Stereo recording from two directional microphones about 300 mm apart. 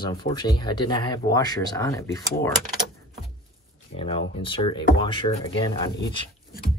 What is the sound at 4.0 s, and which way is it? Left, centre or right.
Speech, centre.